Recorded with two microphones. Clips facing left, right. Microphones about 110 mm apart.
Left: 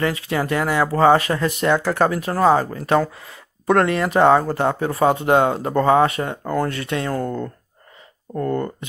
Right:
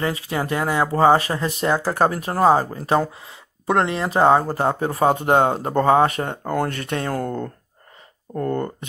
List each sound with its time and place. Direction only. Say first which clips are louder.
0.0 s speech: left 2 dB; 25° right (ahead or behind); by 7.3 s 45° right (ahead or behind)
8.5 s speech: left 1 dB; 30° right (ahead or behind)